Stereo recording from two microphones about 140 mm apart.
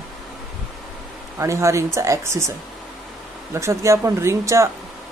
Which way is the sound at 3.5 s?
20° right (ahead or behind).